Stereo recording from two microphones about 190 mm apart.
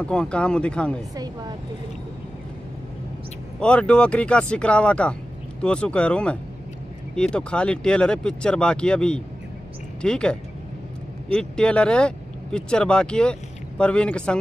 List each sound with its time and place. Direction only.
0.0 s speech: 5° left (ahead or behind)
1.1 s a woman's voice: 20° right (ahead or behind)
3.5 s speech: 5° left (ahead or behind)
11.3 s speech: 5° left (ahead or behind)